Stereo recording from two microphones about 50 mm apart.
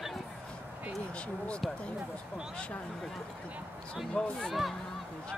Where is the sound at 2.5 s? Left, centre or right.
Left.